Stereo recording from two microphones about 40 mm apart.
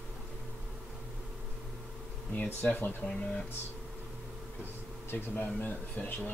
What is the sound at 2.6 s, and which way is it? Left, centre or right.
Speech, left.